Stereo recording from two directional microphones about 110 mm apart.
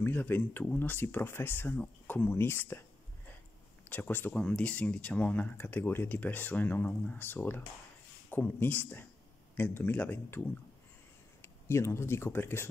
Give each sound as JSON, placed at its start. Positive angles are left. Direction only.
{"t": 0.0, "sound": "speech", "side_deg": 20}
{"t": 3.9, "sound": "speech", "side_deg": 15}